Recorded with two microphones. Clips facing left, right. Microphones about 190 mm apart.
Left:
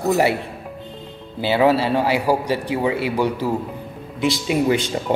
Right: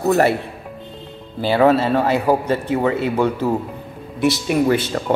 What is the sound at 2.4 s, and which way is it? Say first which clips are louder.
Speech: right 2 dB; 10° left (ahead or behind).